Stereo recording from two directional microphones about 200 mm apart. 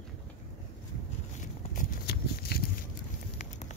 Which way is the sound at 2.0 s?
55° left (ahead or behind).